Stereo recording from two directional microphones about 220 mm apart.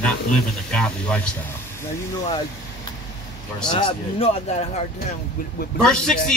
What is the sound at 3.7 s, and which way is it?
Speech, 20° left (ahead or behind).